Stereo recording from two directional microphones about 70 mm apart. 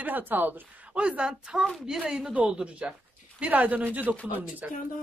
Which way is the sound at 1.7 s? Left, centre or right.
Centre.